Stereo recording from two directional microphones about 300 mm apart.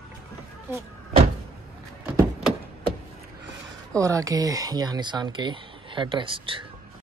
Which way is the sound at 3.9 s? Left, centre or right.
Centre.